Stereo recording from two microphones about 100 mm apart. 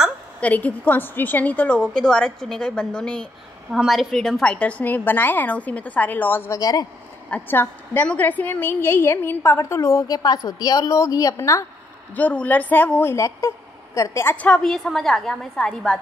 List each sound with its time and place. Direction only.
0.4 s a woman's voice: 15° left (ahead or behind)
6.6 s a woman's voice: 40° left (ahead or behind)
7.2 s a woman's voice: 15° left (ahead or behind); by 11.6 s 35° left (ahead or behind)
12.2 s a woman's voice: 15° left (ahead or behind); by 14.3 s 30° left (ahead or behind)
14.3 s a woman's voice: 10° left (ahead or behind)